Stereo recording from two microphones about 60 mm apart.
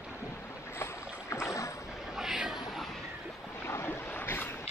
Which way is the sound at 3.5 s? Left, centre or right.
Left.